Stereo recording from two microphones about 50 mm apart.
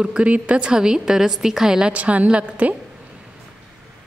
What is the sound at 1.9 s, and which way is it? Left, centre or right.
Speech, right.